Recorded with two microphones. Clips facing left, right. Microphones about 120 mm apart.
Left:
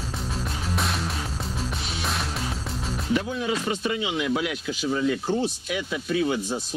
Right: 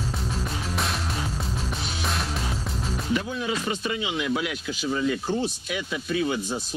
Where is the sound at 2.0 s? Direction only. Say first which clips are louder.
Even; centre (ahead or behind).